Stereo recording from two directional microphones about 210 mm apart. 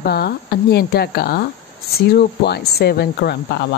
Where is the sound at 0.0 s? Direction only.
50° left (ahead or behind).